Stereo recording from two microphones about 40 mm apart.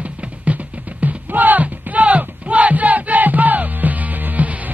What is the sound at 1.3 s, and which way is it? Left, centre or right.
Battle cry, right.